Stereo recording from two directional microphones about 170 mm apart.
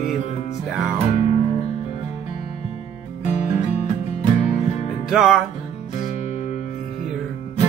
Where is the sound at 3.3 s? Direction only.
45° left (ahead or behind).